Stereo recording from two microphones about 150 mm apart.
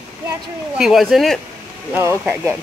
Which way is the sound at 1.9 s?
20° right (ahead or behind).